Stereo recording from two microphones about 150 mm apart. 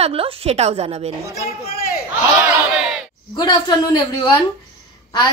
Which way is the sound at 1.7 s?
85° left.